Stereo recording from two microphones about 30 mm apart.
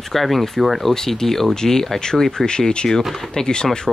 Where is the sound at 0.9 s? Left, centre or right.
Centre.